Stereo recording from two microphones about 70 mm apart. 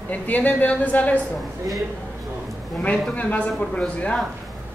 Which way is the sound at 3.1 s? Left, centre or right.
Centre.